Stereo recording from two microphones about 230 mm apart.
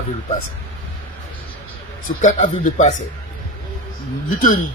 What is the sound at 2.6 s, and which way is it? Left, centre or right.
Speech, left.